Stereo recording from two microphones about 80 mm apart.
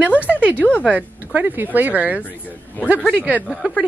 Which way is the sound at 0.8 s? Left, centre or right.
Centre.